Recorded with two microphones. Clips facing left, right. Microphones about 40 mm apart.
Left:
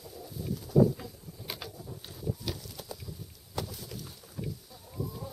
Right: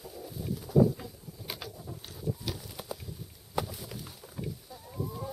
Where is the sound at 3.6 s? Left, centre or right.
Centre.